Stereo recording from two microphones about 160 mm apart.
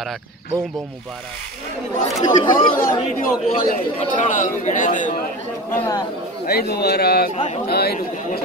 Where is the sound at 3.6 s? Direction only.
55° left (ahead or behind).